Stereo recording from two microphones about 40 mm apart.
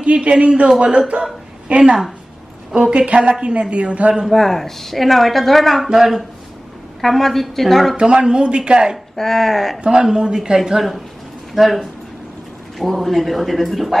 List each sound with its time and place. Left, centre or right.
0.0 s a man's voice: right
4.3 s speech: centre
5.9 s speech: centre
7.0 s speech: centre
8.0 s a man's voice: right
9.1 s speech: centre
10.1 s a man's voice: centre
11.5 s speech: centre